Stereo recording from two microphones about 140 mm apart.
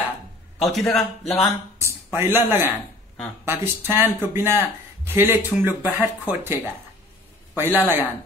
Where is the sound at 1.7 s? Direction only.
20° right (ahead or behind).